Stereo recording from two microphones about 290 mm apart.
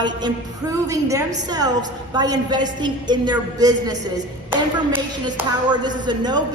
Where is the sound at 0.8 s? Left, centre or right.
Centre.